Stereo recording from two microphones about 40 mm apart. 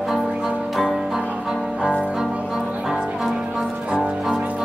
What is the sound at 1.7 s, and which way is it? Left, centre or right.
Music, right.